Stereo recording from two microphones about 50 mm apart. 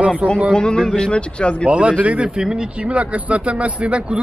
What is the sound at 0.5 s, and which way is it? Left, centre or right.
Speech, centre.